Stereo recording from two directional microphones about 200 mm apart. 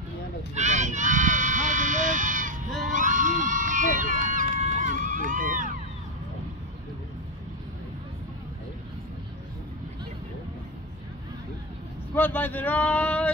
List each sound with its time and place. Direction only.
0.6 s a sound: 35° right (ahead or behind)
2.9 s run: 40° right (ahead or behind)
12.1 s speech: 10° left (ahead or behind)